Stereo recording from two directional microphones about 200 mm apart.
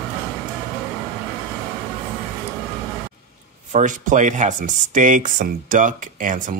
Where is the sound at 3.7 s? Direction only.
40° right (ahead or behind).